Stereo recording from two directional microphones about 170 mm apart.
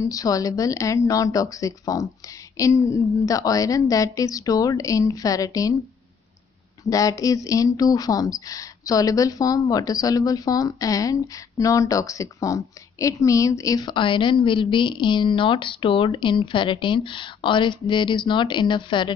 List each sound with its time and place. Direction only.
0.0 s speech: 20° left (ahead or behind)
6.9 s speech: 20° left (ahead or behind)